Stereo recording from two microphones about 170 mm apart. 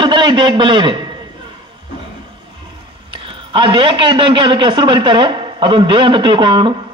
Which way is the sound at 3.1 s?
30° right (ahead or behind).